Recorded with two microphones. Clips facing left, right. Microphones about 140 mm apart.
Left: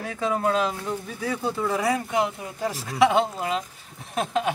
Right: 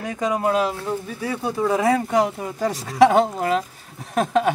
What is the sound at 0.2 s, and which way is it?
Speech, 15° right (ahead or behind).